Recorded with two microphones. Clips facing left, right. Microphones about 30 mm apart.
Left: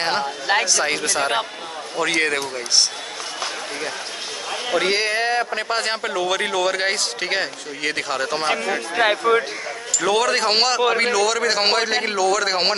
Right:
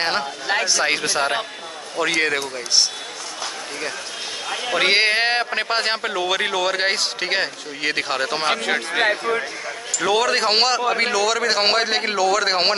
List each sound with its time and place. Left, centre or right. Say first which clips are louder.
0.0 s speech: even; centre
2.0 s a man's voice: even; centre
4.7 s a man's voice: right 3 dB; right
5.5 s speech: right 1 dB; right
9.0 s speech: left 5 dB; left
9.9 s speech: even; centre